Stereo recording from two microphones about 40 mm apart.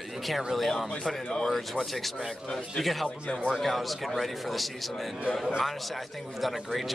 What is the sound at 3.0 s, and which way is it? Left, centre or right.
Speech, left.